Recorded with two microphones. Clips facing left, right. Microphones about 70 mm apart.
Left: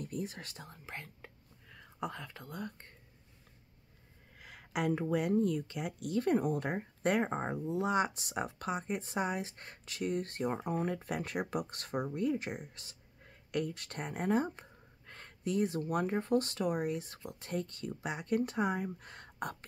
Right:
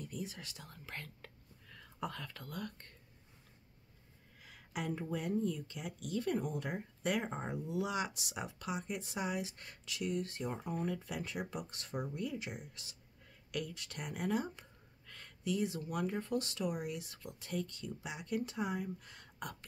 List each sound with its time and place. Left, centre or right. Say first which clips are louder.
0.0 s speech: left 4 dB; left
0.7 s speech: left 2 dB; centre
4.4 s speech: left 7 dB; left